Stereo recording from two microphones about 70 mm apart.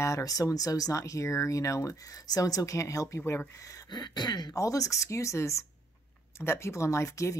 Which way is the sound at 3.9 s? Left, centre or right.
Left.